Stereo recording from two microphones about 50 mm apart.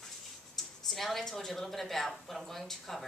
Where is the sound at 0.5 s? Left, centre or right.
Centre.